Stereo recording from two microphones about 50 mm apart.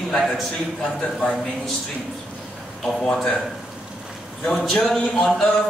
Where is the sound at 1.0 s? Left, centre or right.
Centre.